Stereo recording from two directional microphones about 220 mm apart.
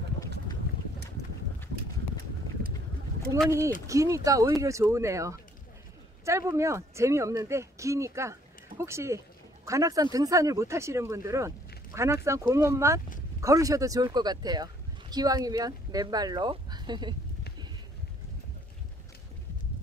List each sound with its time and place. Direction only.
3.4 s speech: 15° right (ahead or behind)